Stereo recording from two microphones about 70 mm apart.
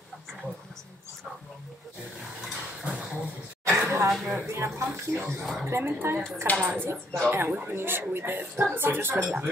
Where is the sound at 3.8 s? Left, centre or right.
Right.